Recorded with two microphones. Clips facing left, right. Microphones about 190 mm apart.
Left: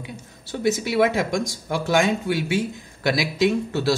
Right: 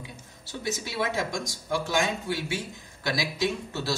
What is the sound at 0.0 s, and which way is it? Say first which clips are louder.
A man's voice: left 7 dB; 65° left (ahead or behind).